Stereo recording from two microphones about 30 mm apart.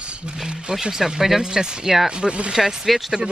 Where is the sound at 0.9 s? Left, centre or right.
Centre; by 2.5 s right.